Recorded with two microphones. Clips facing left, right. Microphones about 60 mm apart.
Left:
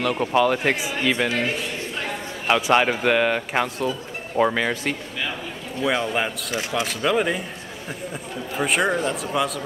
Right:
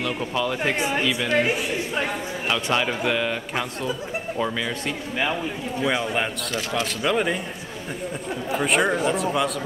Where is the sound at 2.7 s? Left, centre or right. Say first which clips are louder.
Left 5 dB; left.